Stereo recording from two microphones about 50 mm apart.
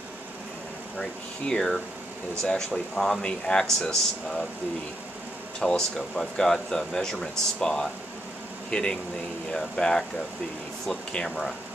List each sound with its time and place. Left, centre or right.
0.9 s speech: centre
5.6 s speech: centre
11.2 s speech: centre